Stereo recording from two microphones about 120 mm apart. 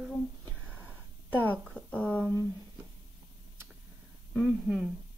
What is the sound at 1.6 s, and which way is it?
Speech, 10° left (ahead or behind).